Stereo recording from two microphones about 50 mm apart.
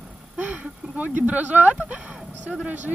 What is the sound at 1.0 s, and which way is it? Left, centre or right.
Speech, right.